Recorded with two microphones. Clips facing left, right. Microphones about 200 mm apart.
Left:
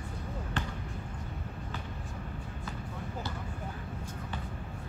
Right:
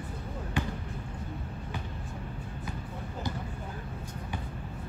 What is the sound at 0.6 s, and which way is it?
Basketball bounce, 10° right (ahead or behind).